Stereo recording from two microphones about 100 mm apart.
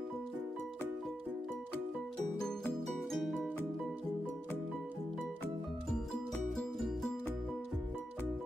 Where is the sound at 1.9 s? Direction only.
5° left (ahead or behind).